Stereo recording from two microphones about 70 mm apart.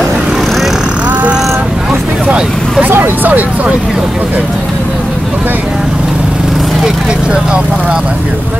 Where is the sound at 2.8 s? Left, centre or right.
Right.